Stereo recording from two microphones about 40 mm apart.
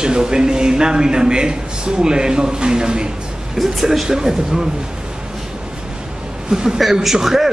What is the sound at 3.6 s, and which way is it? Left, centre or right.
Speech, centre.